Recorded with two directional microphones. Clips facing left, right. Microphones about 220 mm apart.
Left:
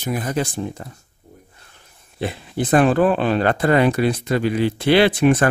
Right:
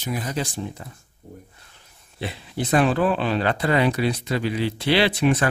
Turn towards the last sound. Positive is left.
turn(degrees=50)  # may be behind; listen again after turning